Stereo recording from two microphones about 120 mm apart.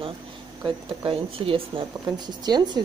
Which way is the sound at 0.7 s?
50° right (ahead or behind).